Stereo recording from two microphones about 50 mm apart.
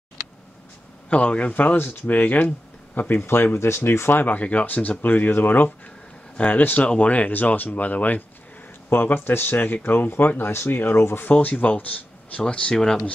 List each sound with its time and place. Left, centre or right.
1.1 s speech: left
2.4 s a sound: left
3.2 s speech: left
4.2 s speech: left
6.3 s speech: left
8.8 s speech: left
11.3 s speech: left
12.7 s speech: centre